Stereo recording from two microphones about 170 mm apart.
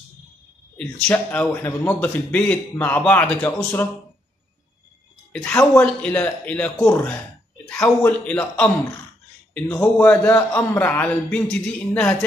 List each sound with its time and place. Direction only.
0.7 s speech: 10° left (ahead or behind)
5.3 s speech: 10° left (ahead or behind)